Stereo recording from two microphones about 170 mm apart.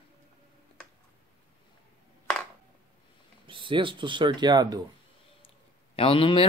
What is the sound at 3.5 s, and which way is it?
Speech, 30° right (ahead or behind).